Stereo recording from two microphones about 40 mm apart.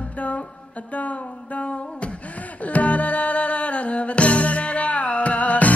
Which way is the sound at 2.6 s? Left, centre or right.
Left.